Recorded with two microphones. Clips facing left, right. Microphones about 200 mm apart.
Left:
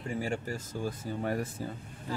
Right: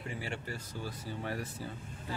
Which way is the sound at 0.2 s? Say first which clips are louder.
Left 7 dB; 45° left (ahead or behind).